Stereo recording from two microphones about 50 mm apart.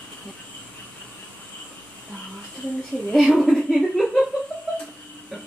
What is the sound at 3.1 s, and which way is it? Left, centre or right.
Speech, centre.